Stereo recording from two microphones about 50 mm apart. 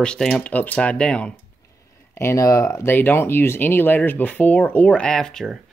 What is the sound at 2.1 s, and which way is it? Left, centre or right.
Speech, left.